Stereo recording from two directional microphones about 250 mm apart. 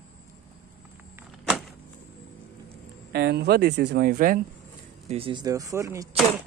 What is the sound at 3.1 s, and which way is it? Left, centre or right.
Speech, right.